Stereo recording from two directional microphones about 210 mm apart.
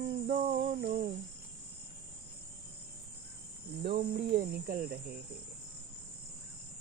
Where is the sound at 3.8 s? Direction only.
55° right (ahead or behind).